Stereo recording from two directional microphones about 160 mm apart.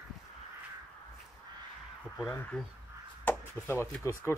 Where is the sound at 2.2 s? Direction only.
10° left (ahead or behind).